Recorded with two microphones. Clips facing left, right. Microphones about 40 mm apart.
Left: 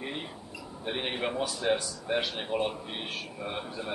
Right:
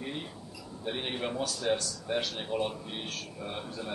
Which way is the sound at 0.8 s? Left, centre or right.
Centre.